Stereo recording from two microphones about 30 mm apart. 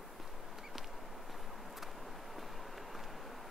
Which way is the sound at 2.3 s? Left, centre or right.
Centre.